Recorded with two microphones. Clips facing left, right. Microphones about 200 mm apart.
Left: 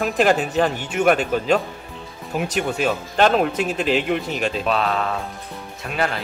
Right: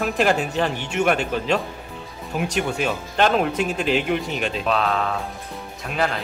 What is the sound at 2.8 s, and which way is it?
Speech, 40° left (ahead or behind).